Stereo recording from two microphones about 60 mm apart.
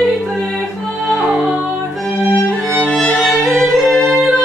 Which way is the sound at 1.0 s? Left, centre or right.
Centre.